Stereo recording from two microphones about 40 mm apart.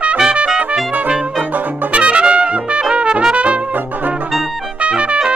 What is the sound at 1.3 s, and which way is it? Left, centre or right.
Brass instrument, right.